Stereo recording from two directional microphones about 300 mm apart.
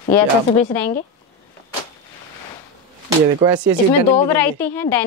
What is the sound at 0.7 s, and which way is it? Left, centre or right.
Speech, centre.